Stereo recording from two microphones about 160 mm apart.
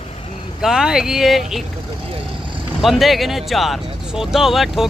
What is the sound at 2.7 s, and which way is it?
Speech, centre (ahead or behind).